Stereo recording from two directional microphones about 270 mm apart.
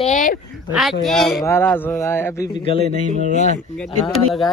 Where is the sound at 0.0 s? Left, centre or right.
Left.